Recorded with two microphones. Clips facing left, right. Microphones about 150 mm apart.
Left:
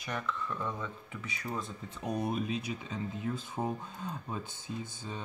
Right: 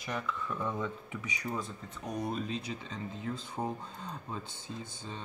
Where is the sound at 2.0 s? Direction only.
15° left (ahead or behind).